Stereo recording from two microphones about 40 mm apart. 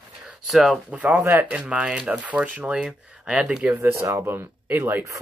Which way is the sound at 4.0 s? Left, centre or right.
Right.